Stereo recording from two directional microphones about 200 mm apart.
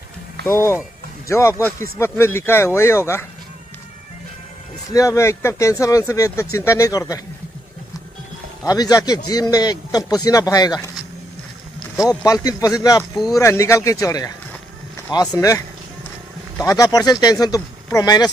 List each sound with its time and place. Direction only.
0.5 s speech: 10° left (ahead or behind)
4.9 s speech: 15° left (ahead or behind)
8.6 s a man's voice: 20° left (ahead or behind)
12.3 s speech: 15° left (ahead or behind)